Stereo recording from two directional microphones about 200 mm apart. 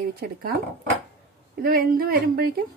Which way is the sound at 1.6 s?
45° right (ahead or behind).